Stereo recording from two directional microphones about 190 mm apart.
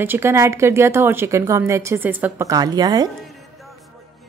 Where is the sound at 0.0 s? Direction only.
10° right (ahead or behind).